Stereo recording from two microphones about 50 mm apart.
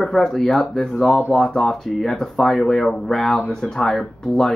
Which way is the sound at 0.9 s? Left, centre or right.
Centre.